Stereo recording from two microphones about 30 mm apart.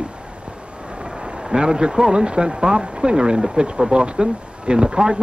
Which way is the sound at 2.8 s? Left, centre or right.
Right.